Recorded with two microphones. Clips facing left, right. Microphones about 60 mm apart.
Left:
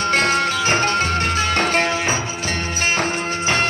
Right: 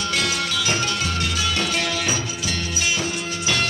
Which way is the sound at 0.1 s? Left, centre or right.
Left.